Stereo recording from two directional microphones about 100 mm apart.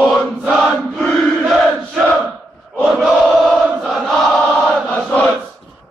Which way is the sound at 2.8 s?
Centre (ahead or behind).